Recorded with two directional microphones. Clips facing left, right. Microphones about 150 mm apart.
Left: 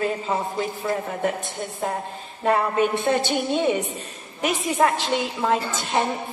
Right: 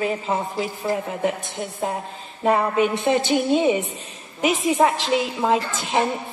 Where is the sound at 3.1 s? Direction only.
15° right (ahead or behind).